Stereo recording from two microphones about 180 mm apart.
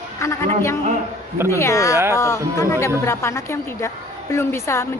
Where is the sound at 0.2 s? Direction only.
15° left (ahead or behind).